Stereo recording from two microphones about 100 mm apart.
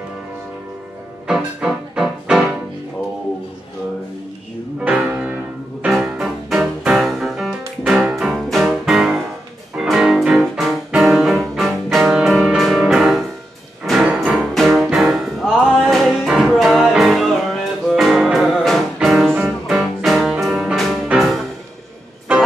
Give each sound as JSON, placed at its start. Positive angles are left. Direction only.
{"t": 1.2, "sound": "music", "side_deg": -5}
{"t": 4.7, "sound": "music", "side_deg": -10}
{"t": 5.9, "sound": "music", "side_deg": 0}
{"t": 19.3, "sound": "music", "side_deg": -15}
{"t": 20.0, "sound": "music", "side_deg": 0}